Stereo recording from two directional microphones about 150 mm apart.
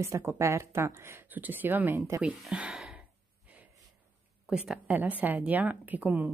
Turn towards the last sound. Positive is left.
turn(degrees=-10)  # may be behind; listen again after turning